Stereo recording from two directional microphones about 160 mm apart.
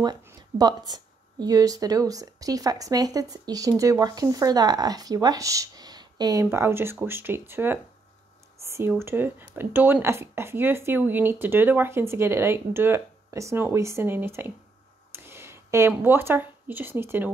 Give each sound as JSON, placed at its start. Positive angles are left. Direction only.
{"t": 0.0, "sound": "speech", "side_deg": -25}